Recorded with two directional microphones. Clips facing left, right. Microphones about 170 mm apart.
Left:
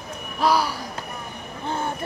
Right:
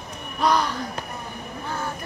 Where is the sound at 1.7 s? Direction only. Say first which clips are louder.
Left 4 dB; 25° left (ahead or behind).